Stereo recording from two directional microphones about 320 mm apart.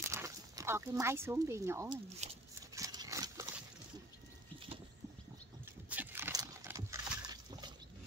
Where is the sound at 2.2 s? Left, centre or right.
Right.